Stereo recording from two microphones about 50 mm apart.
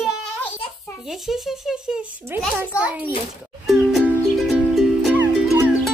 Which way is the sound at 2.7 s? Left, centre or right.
Right.